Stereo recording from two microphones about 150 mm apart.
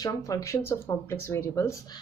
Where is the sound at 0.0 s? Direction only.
20° left (ahead or behind).